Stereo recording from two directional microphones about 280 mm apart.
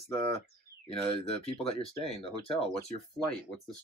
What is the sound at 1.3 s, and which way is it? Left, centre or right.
Speech, left.